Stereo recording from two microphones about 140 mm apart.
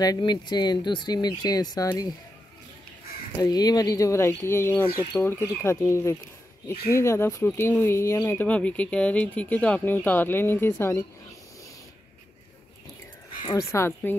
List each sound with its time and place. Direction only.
0.0 s speech: 30° left (ahead or behind)
3.3 s speech: 25° left (ahead or behind)
13.5 s speech: 20° left (ahead or behind)